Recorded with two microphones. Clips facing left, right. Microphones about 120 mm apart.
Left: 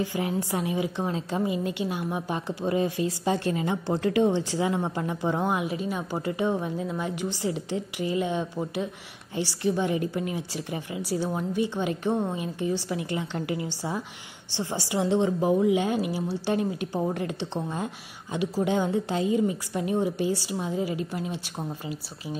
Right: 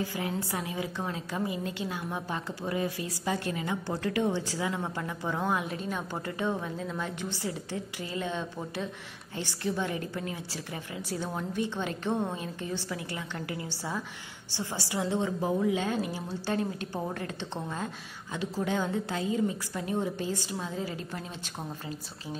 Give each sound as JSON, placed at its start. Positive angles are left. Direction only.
{"t": 0.0, "sound": "a woman's voice", "side_deg": 20}